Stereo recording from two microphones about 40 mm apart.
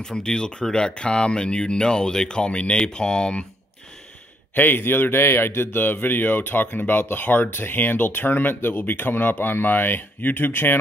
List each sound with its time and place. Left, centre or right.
0.0 s speech: centre
4.6 s a man's voice: left
5.8 s speech: left